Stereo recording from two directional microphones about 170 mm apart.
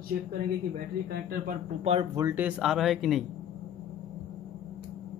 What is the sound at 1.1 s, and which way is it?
Speech, 65° right (ahead or behind).